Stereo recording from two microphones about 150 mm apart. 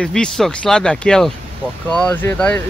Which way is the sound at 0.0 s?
5° left (ahead or behind).